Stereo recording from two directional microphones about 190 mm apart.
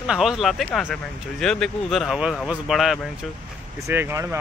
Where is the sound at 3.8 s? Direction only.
15° right (ahead or behind).